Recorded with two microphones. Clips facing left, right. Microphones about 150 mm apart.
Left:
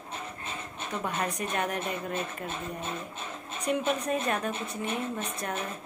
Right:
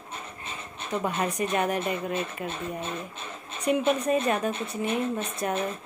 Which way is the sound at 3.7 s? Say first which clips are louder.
Right 5 dB; 5° right (ahead or behind).